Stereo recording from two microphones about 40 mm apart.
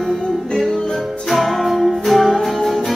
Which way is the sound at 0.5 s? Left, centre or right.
Centre.